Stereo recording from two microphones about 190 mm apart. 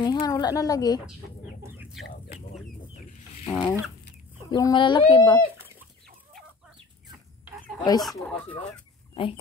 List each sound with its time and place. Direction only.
0.0 s speech: 20° left (ahead or behind)
1.6 s chicken: 5° right (ahead or behind)
3.4 s speech: 20° left (ahead or behind)
5.6 s chicken: 10° right (ahead or behind)
8.0 s speech: centre (ahead or behind)